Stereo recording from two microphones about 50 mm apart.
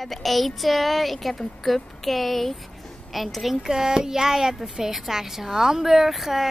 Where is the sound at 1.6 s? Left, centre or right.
Centre.